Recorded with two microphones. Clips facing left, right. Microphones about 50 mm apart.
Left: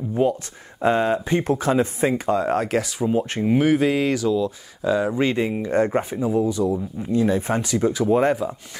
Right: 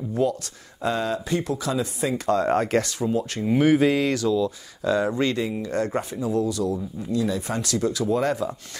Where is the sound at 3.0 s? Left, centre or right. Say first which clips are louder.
Left 3 dB; left.